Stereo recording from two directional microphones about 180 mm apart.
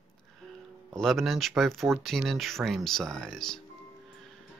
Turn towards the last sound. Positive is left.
turn(degrees=5)  # may be behind; listen again after turning